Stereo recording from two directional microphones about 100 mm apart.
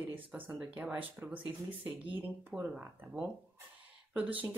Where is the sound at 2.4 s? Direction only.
15° right (ahead or behind).